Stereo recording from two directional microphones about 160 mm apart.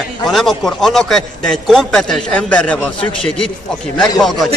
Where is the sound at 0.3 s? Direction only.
Centre (ahead or behind).